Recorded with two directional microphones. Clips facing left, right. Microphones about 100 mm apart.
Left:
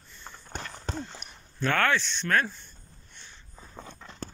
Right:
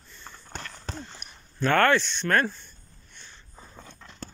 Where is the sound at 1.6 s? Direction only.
Centre (ahead or behind).